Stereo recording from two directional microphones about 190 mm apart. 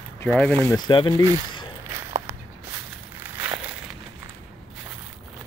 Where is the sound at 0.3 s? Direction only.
5° left (ahead or behind).